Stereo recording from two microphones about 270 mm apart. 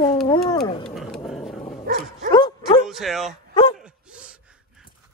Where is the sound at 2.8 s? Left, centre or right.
Centre.